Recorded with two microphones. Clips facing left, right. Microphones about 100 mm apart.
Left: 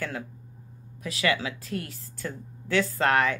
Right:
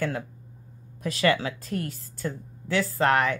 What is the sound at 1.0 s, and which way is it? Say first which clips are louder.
Speech: right 3 dB; 35° right (ahead or behind).